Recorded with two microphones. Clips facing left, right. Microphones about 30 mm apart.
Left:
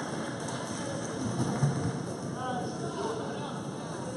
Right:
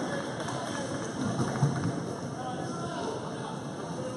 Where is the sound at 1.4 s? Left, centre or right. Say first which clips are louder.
Left 1 dB; centre.